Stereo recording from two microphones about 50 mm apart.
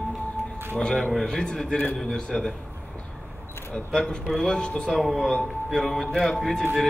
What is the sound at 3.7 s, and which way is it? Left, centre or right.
Speech, centre.